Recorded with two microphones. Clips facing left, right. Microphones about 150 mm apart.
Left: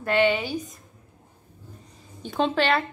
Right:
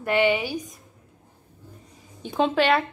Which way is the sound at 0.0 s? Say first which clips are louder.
Even; 15° right (ahead or behind).